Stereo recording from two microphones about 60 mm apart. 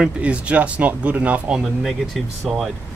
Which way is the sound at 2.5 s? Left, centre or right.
Centre.